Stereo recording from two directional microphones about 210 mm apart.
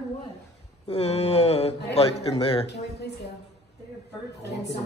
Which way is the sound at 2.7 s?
55° left (ahead or behind).